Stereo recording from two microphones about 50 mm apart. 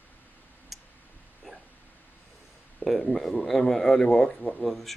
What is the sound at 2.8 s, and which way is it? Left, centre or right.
Speech, centre.